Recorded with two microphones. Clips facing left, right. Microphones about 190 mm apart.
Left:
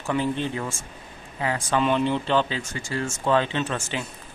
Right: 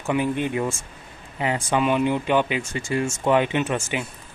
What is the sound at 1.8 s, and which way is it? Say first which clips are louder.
Speech: right 1 dB; 10° right (ahead or behind).